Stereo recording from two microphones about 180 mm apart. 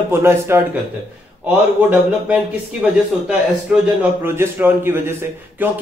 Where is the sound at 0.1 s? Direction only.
15° right (ahead or behind).